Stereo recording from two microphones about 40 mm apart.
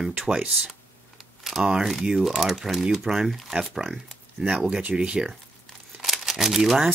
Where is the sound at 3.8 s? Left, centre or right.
Right.